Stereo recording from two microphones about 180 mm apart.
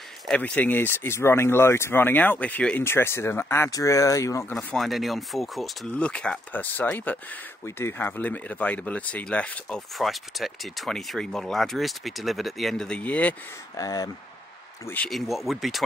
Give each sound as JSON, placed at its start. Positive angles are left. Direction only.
{"t": 0.3, "sound": "speech", "side_deg": 10}
{"t": 13.7, "sound": "speech", "side_deg": 20}
{"t": 14.9, "sound": "speech", "side_deg": 5}